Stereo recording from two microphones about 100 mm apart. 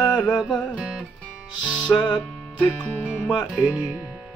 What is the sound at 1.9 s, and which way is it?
Music, 45° left (ahead or behind).